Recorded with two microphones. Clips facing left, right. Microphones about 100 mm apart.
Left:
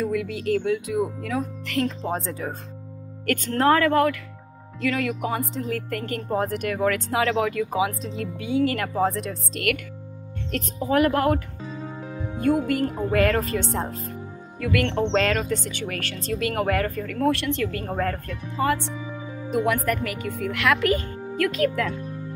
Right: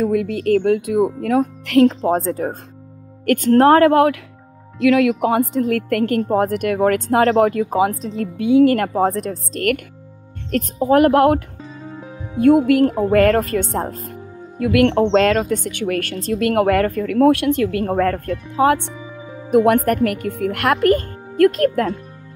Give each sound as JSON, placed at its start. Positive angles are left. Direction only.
{"t": 0.0, "sound": "speech", "side_deg": -50}
{"t": 2.0, "sound": "a woman's voice", "side_deg": -50}
{"t": 12.6, "sound": "a woman's voice", "side_deg": -65}